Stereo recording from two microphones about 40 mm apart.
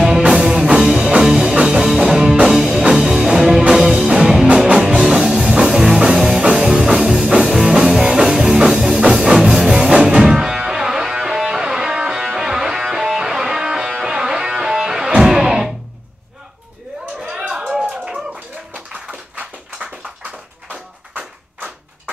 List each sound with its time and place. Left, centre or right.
0.1 s music: right
7.5 s music: centre
17.2 s a sound: centre